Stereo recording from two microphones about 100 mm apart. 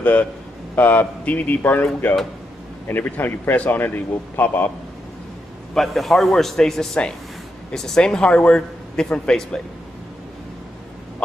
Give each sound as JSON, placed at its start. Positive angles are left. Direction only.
{"t": 0.0, "sound": "speech", "side_deg": 15}
{"t": 2.9, "sound": "a man's voice", "side_deg": 20}
{"t": 5.8, "sound": "a man's voice", "side_deg": 0}